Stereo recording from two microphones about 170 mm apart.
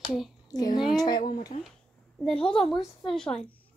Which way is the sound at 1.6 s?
5° left (ahead or behind).